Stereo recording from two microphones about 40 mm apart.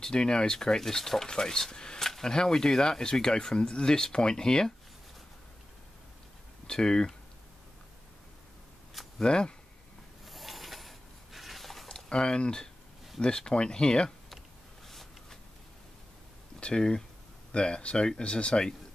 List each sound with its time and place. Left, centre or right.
0.0 s speech: left
6.7 s speech: centre
9.2 s speech: left
10.2 s a sound: centre
12.1 s speech: left
14.9 s a sound: centre
16.5 s speech: left